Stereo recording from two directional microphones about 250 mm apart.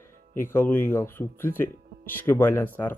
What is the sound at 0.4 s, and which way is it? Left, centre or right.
Speech, centre.